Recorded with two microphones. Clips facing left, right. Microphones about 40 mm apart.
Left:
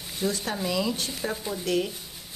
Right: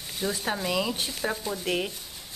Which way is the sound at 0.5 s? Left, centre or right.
Centre.